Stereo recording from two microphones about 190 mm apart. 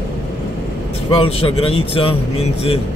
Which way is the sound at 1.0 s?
30° left (ahead or behind).